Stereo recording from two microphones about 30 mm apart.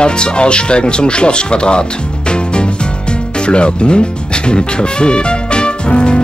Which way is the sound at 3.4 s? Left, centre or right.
Left.